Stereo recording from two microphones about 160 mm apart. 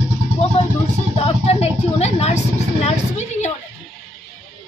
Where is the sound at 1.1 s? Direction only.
40° left (ahead or behind).